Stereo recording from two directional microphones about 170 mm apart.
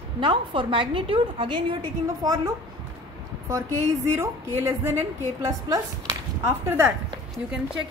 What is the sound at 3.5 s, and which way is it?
A woman's voice, 15° right (ahead or behind).